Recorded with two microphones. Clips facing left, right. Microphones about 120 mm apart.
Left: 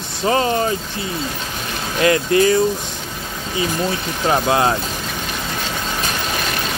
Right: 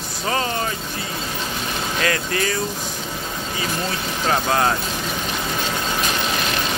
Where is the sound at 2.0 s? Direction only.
25° left (ahead or behind).